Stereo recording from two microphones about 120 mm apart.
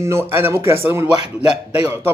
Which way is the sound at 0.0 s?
20° right (ahead or behind).